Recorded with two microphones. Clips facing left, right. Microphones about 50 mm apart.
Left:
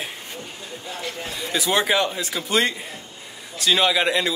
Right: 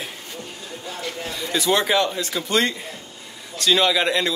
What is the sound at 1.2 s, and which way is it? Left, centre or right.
Speech, centre.